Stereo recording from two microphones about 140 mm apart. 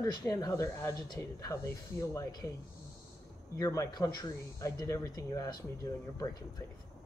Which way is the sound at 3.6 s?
25° left (ahead or behind).